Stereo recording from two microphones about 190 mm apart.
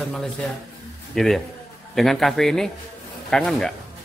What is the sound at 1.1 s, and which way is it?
A man's voice, centre (ahead or behind).